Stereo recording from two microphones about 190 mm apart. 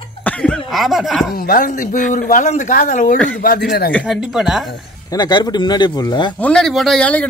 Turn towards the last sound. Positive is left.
turn(degrees=5)  # may be behind; listen again after turning